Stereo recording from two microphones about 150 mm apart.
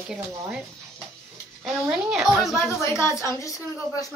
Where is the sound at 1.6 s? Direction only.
5° right (ahead or behind).